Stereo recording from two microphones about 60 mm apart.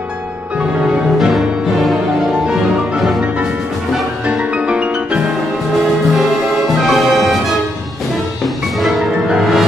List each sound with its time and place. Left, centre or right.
3.0 s music: centre
4.3 s music: centre
6.9 s music: centre
9.3 s music: centre